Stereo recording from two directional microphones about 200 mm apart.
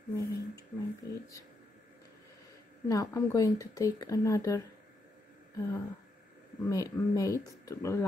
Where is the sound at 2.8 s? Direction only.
15° left (ahead or behind).